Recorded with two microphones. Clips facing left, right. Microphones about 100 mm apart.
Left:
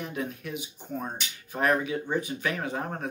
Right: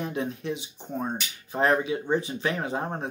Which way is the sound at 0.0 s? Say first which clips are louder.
Right 4 dB; 25° right (ahead or behind).